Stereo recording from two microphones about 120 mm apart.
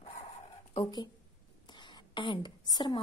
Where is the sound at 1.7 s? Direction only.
40° left (ahead or behind).